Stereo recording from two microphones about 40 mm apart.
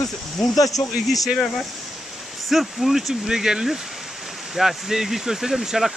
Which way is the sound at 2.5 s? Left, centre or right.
Centre.